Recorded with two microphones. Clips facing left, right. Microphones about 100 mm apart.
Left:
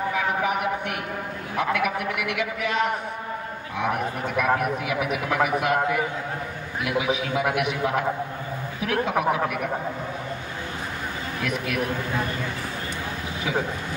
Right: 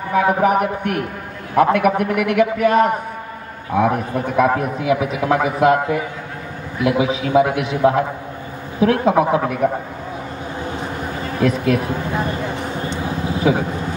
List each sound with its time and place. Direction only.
0.1 s a man's voice: 45° right (ahead or behind)
11.3 s a man's voice: 35° right (ahead or behind)
12.9 s a sound: 35° right (ahead or behind)